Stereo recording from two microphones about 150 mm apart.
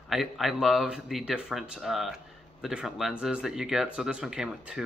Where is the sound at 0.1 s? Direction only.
Centre (ahead or behind).